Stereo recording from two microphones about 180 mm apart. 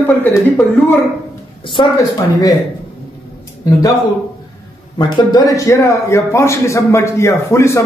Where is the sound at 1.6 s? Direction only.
25° left (ahead or behind).